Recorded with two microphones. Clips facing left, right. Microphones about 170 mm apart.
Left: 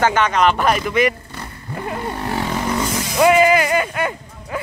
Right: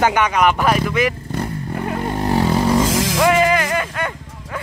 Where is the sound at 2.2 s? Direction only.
40° right (ahead or behind).